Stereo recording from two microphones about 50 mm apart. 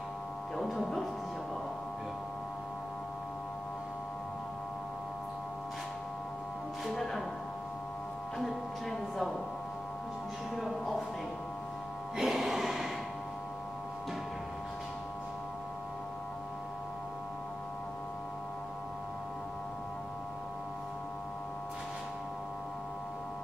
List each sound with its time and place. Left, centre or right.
12.2 s music: centre